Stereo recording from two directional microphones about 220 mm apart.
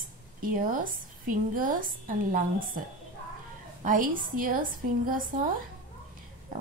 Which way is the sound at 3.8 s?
35° right (ahead or behind).